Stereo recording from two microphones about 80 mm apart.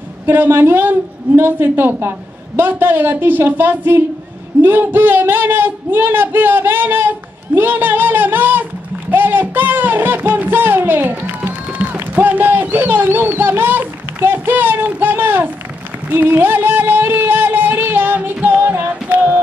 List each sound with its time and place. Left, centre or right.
0.3 s a woman's voice: right
9.1 s music: right